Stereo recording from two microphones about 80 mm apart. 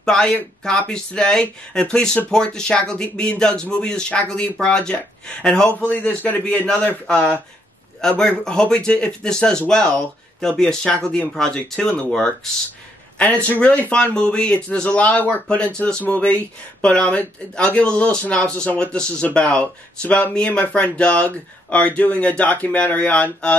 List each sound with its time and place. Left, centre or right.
0.0 s speech: centre
13.5 s speech: left